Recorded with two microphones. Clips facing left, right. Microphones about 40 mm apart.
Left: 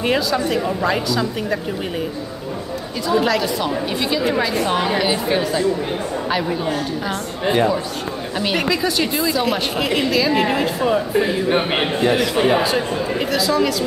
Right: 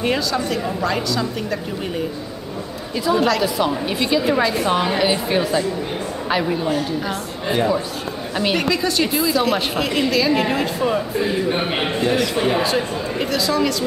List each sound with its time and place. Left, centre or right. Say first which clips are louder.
0.0 s speech: left 2 dB; centre
3.1 s a woman's voice: even; centre
8.4 s a woman's voice: even; centre
11.4 s a man's voice: left 2 dB; left
12.6 s a woman's voice: left 1 dB; centre